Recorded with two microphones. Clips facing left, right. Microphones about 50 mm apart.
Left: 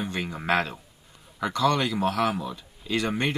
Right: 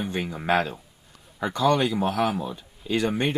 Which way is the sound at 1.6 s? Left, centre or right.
Right.